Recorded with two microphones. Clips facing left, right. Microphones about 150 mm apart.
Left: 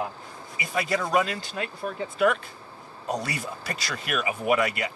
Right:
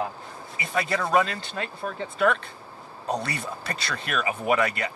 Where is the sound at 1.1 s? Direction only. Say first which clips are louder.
Right 4 dB; 10° left (ahead or behind).